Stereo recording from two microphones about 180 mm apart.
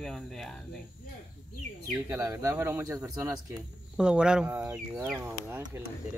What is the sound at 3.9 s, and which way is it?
Speech, 5° right (ahead or behind).